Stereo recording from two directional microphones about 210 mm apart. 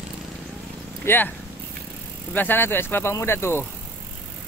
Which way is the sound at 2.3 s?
10° left (ahead or behind).